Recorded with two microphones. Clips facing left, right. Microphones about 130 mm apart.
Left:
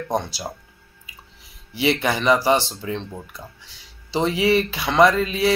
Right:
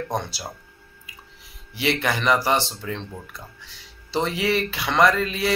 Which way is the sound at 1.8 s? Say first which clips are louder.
Left 3 dB; 20° left (ahead or behind).